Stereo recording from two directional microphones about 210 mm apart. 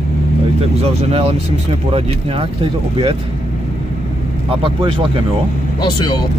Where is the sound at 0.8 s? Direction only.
30° right (ahead or behind).